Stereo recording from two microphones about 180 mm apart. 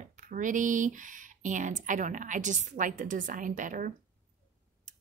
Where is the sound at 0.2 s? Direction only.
45° right (ahead or behind).